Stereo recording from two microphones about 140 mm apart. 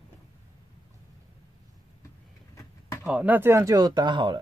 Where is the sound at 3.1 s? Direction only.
10° right (ahead or behind); by 4.4 s 35° right (ahead or behind).